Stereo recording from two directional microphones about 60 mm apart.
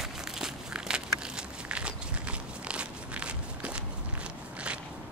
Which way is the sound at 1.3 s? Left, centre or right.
Centre.